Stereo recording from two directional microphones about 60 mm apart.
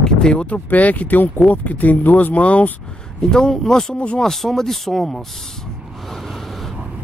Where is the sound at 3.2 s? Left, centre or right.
Centre.